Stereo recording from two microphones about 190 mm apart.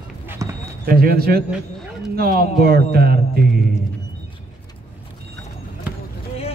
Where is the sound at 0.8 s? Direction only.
55° right (ahead or behind).